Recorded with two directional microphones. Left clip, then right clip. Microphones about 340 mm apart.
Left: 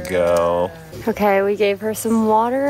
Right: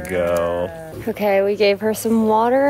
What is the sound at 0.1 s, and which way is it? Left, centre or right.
A woman's voice, centre.